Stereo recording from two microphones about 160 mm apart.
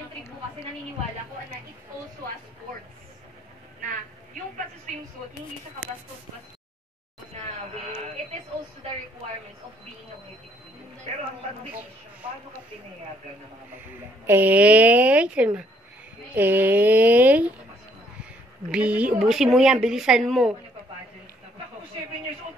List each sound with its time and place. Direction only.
7.3 s train: 45° right (ahead or behind)
14.2 s a woman's voice: 10° right (ahead or behind)
18.7 s speech: 10° right (ahead or behind)